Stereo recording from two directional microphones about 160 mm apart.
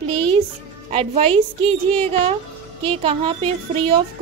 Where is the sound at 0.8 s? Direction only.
40° right (ahead or behind).